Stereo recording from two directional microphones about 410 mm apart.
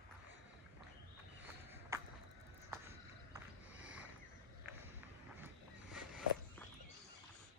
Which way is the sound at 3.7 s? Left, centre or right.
Centre.